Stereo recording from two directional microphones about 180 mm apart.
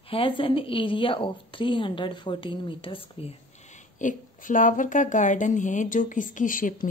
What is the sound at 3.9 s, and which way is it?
Speech, 45° left (ahead or behind).